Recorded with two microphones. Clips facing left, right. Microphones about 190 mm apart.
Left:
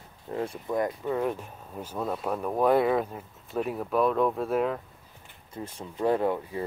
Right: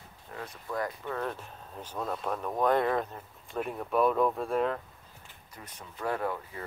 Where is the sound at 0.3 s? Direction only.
25° left (ahead or behind); by 4.7 s 5° left (ahead or behind).